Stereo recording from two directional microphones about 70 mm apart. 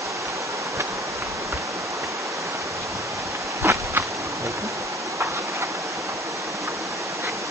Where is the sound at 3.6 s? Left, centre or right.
Right.